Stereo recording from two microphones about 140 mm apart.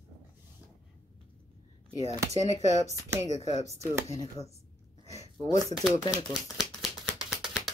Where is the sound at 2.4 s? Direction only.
50° left (ahead or behind).